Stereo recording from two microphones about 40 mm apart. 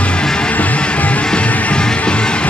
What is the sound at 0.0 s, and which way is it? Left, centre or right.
Music, left.